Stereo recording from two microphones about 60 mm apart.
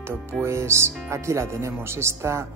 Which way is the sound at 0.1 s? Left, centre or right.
Right.